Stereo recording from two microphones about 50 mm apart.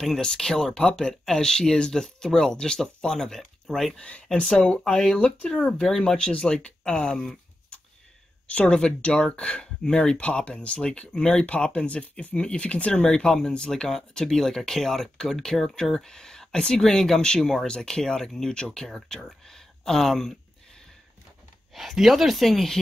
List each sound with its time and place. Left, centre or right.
0.2 s speech: centre
4.0 s speech: left
5.1 s speech: left
5.6 s speech: centre
6.9 s a sound: centre
8.5 s speech: left
21.7 s speech: centre